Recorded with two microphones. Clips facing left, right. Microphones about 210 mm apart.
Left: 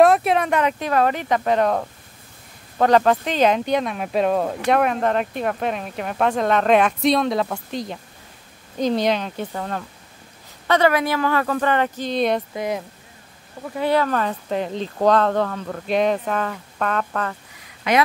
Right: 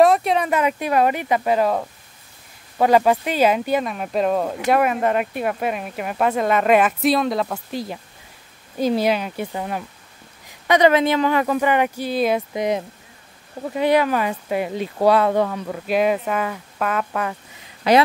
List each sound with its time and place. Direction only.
0.0 s speech: centre (ahead or behind)
12.5 s speech: 20° right (ahead or behind)
17.9 s speech: 35° right (ahead or behind)